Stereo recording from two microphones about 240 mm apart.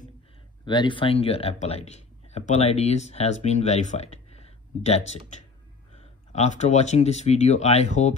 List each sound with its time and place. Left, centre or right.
0.7 s speech: centre